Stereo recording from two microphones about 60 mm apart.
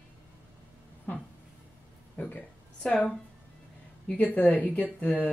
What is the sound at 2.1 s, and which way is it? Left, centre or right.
Speech, left.